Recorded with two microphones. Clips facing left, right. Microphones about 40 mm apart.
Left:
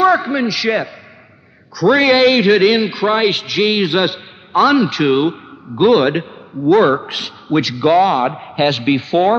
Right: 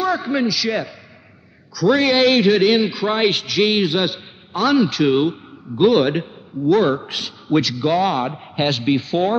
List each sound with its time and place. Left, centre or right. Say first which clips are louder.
0.0 s a sound: left 8 dB; left
0.5 s a man's voice: left 4 dB; left
2.0 s a man's voice: left 4 dB; left